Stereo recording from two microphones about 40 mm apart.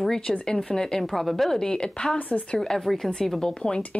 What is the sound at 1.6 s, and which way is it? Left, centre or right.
Speech, centre.